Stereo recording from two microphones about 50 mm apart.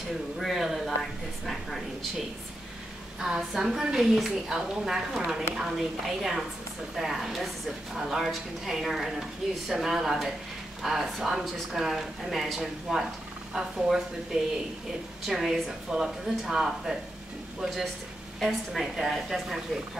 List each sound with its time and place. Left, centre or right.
0.4 s speech: centre
1.4 s a sound: centre
3.2 s a woman's voice: centre
12.5 s a woman's voice: centre
14.3 s a woman's voice: centre
15.2 s a woman's voice: centre
18.4 s a woman's voice: centre